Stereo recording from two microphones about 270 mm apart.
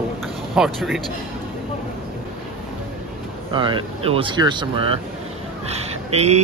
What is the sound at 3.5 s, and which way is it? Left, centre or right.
Speech, centre.